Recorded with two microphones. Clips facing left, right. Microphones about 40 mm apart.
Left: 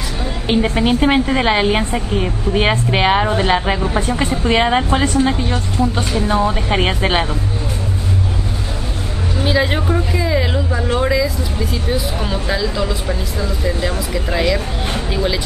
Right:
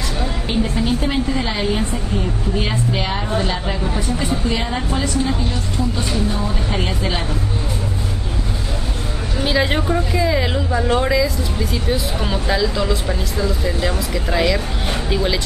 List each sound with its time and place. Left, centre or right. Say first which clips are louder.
0.5 s a woman's voice: left 6 dB; left
9.4 s speech: left 1 dB; centre